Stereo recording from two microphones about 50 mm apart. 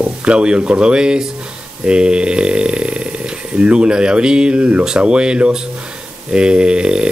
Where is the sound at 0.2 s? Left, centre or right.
Right.